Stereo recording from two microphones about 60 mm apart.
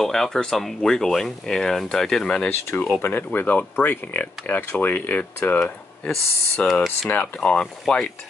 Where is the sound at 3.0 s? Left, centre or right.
Left.